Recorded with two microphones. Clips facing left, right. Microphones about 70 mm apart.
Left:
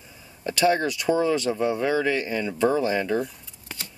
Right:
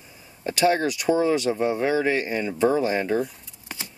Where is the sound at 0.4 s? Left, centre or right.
Right.